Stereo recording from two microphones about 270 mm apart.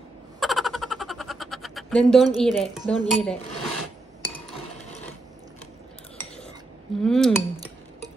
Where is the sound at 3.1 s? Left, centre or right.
Centre.